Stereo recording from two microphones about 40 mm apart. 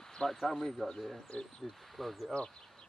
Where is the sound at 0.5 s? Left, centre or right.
Centre.